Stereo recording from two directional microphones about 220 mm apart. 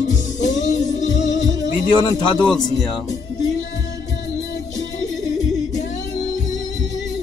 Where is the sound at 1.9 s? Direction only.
20° left (ahead or behind).